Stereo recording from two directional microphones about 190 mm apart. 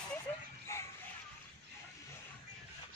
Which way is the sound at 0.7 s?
15° left (ahead or behind).